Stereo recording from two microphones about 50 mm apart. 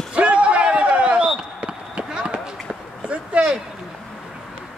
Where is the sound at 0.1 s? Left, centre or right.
Right.